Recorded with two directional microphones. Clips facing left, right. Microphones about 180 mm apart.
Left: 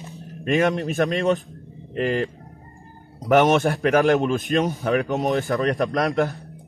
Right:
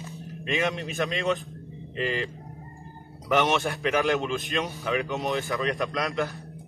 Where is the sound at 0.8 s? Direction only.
40° left (ahead or behind).